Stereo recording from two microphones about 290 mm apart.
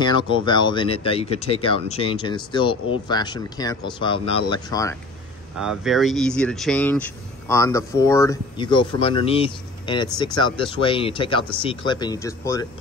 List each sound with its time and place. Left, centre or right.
0.0 s speech: centre
5.6 s speech: centre